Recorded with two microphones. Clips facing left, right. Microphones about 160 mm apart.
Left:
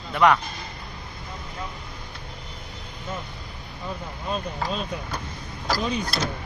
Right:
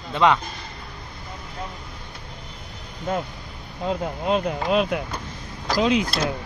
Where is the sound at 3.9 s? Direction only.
75° right (ahead or behind).